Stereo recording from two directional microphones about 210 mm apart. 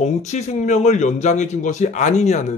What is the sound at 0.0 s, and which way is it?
Speech, 35° left (ahead or behind).